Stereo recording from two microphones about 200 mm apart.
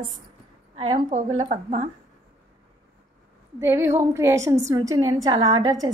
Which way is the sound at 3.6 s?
15° right (ahead or behind).